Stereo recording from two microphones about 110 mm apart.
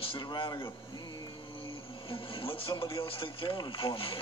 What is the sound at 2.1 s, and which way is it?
Radio, 55° left (ahead or behind).